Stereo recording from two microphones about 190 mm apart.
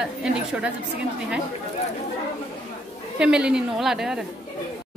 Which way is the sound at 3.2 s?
5° right (ahead or behind).